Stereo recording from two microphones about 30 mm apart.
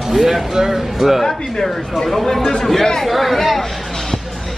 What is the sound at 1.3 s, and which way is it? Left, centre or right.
Speech, centre.